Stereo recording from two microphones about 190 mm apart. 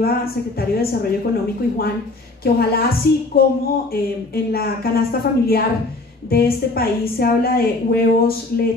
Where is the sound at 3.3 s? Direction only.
55° left (ahead or behind).